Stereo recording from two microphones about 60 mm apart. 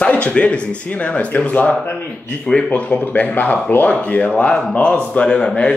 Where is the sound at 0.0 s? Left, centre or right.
Left.